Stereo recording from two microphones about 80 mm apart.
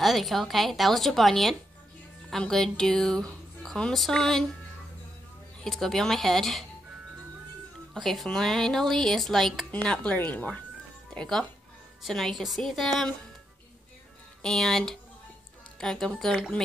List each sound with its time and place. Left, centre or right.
0.0 s a woman's voice: centre
5.6 s a woman's voice: centre
7.9 s a woman's voice: centre
9.7 s speech: centre
11.1 s a woman's voice: centre
14.4 s a woman's voice: centre